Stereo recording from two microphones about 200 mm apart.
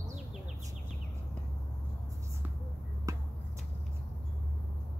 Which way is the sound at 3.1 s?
15° right (ahead or behind).